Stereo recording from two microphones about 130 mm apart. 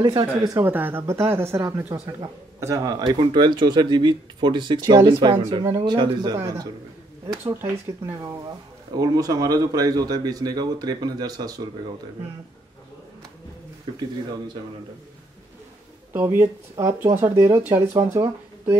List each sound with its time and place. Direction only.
0.0 s a man's voice: 30° right (ahead or behind)
0.7 s speech: 15° right (ahead or behind)
3.2 s a man's voice: 40° right (ahead or behind)
16.1 s speech: 15° right (ahead or behind)